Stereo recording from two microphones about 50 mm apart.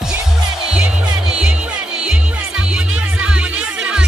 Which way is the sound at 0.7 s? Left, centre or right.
Right.